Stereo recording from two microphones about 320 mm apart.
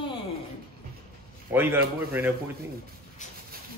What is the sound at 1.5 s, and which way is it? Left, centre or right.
Speech, centre.